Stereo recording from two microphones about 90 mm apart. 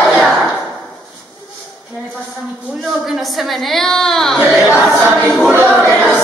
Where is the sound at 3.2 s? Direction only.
Centre (ahead or behind).